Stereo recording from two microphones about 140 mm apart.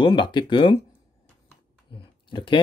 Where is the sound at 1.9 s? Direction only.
40° left (ahead or behind).